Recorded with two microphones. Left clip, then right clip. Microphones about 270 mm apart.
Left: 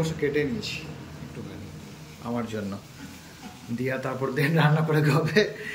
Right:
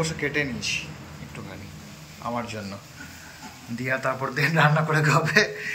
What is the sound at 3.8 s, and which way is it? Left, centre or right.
A man's voice, centre.